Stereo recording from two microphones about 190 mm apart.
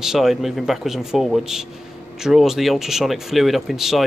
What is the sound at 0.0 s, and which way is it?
Speech, centre (ahead or behind).